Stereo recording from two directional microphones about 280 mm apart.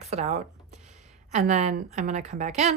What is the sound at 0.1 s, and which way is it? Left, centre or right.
A woman's voice, right.